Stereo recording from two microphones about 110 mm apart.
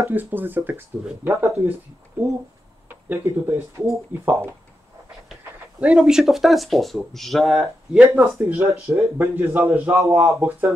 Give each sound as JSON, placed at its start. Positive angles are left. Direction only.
{"t": 0.0, "sound": "speech", "side_deg": -20}
{"t": 3.1, "sound": "speech", "side_deg": -20}
{"t": 5.8, "sound": "speech", "side_deg": -10}
{"t": 8.2, "sound": "speech", "side_deg": -20}